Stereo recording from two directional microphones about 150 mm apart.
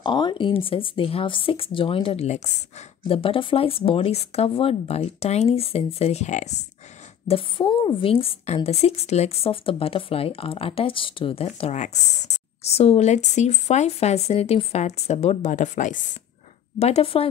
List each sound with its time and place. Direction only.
0.0 s speech: 30° left (ahead or behind); by 2.5 s 50° left (ahead or behind)
3.1 s speech: 35° left (ahead or behind)
7.2 s a woman's voice: 35° left (ahead or behind); by 16.0 s 55° left (ahead or behind)
16.7 s a woman's voice: 45° left (ahead or behind)